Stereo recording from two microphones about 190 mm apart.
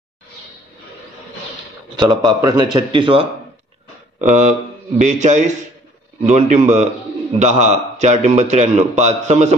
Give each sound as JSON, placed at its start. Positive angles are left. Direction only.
{"t": 2.0, "sound": "a man's voice", "side_deg": -20}
{"t": 4.3, "sound": "a man's voice", "side_deg": -40}